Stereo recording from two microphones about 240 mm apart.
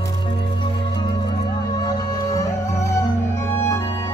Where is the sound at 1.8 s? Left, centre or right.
Centre.